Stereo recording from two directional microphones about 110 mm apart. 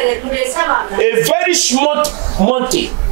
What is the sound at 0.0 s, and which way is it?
Speech, 20° right (ahead or behind).